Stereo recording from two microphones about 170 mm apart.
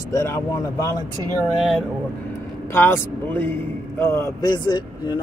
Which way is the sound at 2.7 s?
15° left (ahead or behind).